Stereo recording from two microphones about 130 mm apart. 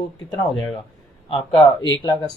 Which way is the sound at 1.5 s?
30° left (ahead or behind).